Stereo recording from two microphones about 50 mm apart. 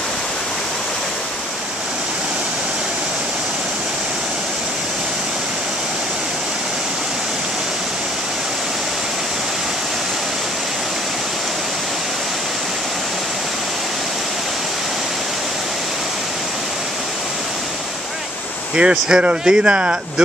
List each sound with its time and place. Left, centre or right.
18.8 s speech: centre